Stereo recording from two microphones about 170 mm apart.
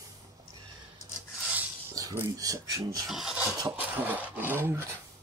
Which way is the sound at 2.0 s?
20° right (ahead or behind).